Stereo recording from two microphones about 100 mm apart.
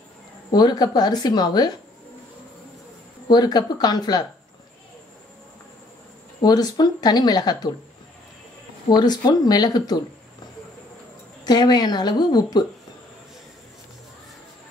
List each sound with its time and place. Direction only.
0.5 s speech: 45° left (ahead or behind)
3.3 s speech: 45° left (ahead or behind)
6.4 s speech: 40° left (ahead or behind)
8.8 s speech: 45° left (ahead or behind)
11.4 s speech: 45° left (ahead or behind)